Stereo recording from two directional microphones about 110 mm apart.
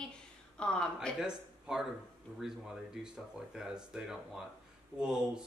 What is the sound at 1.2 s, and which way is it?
Speech, 5° right (ahead or behind).